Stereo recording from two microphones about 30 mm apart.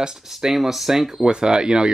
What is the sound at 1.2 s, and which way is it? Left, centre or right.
Speech, right.